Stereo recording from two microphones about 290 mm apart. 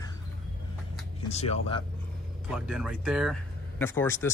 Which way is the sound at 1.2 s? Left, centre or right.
Left.